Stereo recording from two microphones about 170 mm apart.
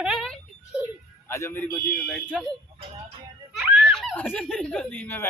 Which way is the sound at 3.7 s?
Centre (ahead or behind).